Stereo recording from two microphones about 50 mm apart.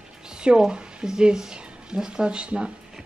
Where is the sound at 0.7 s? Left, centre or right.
Centre.